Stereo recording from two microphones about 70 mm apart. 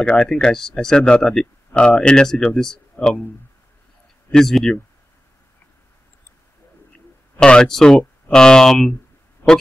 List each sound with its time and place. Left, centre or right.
0.0 s speech: centre
4.3 s speech: centre
7.3 s speech: centre
9.4 s speech: left